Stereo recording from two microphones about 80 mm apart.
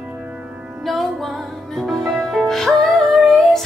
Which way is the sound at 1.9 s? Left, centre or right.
Centre.